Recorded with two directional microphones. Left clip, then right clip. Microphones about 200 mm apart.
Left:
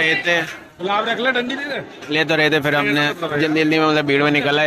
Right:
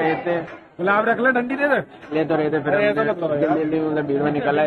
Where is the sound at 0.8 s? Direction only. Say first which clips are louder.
Right 1 dB; 45° right (ahead or behind).